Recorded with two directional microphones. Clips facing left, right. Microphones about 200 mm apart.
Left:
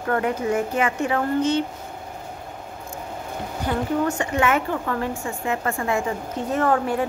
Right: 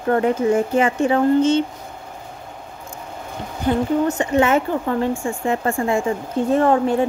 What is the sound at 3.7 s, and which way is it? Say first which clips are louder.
A woman's voice: right 5 dB; 20° right (ahead or behind).